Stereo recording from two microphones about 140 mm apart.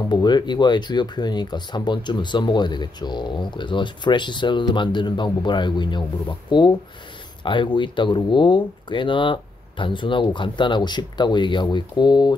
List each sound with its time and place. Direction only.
0.1 s speech: 30° left (ahead or behind)